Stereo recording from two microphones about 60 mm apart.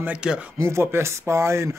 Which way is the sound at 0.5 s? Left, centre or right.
Right.